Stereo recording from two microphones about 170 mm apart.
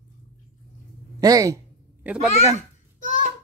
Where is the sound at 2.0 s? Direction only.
10° right (ahead or behind).